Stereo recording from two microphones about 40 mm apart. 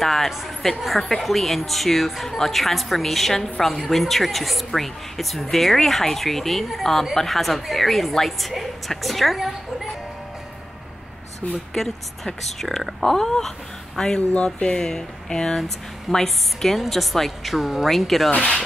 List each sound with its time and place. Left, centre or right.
0.0 s speech: centre
11.7 s speech: centre
18.3 s speech: left